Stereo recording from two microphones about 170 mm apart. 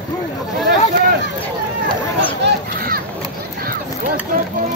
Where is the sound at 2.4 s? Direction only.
65° right (ahead or behind).